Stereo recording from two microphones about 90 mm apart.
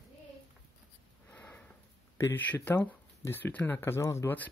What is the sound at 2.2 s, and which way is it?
Speech, 25° left (ahead or behind).